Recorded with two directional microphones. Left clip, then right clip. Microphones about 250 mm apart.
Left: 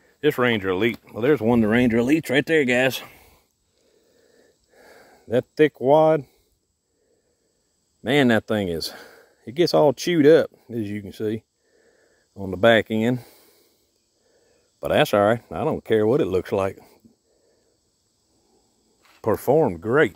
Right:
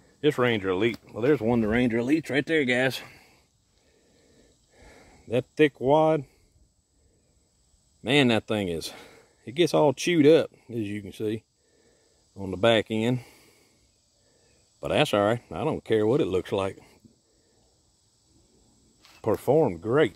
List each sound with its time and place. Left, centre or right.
0.2 s speech: left
4.7 s a sound: centre
8.0 s speech: centre
14.8 s speech: centre
19.0 s speech: centre